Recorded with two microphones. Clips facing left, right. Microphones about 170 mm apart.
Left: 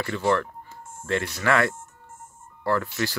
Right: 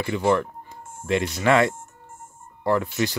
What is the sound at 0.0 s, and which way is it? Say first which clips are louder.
Speech: right 2 dB; 15° right (ahead or behind).